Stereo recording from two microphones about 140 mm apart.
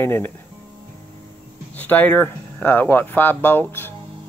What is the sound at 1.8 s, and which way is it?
Speech, 10° left (ahead or behind).